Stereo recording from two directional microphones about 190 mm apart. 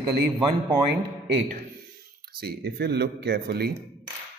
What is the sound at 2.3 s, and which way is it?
Speech, 55° right (ahead or behind).